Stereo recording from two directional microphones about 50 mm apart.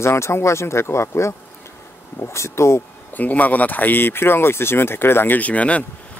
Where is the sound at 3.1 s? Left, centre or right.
Left.